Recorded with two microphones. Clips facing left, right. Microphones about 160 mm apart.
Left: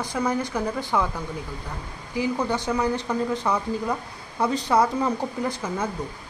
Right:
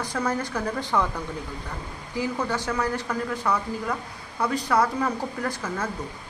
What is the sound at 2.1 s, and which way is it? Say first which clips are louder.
Speech: left 2 dB; 15° left (ahead or behind).